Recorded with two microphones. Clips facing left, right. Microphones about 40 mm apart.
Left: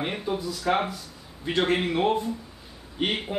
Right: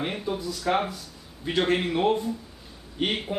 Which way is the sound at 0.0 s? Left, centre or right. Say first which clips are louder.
Left 1 dB; centre.